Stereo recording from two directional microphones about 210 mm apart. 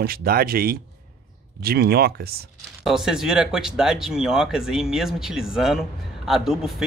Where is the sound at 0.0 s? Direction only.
45° right (ahead or behind).